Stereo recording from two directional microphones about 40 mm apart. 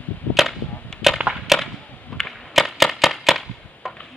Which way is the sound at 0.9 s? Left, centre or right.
Centre.